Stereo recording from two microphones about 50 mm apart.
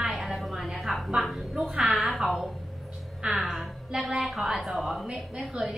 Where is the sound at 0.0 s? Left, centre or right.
Centre.